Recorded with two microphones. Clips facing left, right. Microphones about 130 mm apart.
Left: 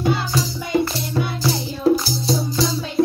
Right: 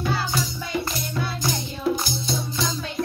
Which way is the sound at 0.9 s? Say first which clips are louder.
Left 5 dB; 30° left (ahead or behind).